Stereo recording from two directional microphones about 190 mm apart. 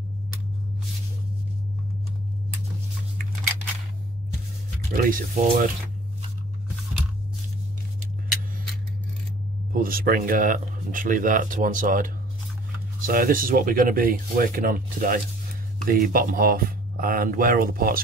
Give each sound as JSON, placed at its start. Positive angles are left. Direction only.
{"t": 4.9, "sound": "speech", "side_deg": -50}
{"t": 9.7, "sound": "speech", "side_deg": -50}